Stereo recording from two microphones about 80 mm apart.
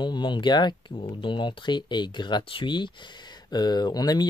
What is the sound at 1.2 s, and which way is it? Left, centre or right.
Speech, left.